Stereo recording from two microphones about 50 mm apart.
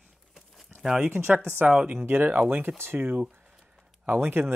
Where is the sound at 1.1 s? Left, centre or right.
Right.